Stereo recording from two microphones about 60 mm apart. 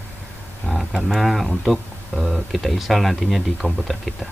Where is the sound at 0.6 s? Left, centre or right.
Centre.